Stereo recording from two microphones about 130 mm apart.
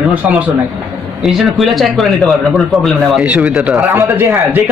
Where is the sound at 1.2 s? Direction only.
5° right (ahead or behind).